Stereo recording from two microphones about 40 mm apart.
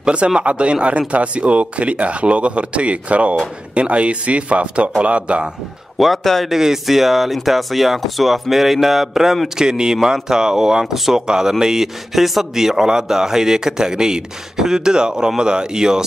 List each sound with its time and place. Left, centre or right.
0.0 s speech: right
6.2 s speech: centre
6.5 s speech: centre
9.6 s a man's voice: centre